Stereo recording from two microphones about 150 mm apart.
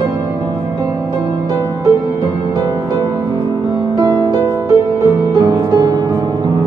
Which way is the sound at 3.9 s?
25° right (ahead or behind).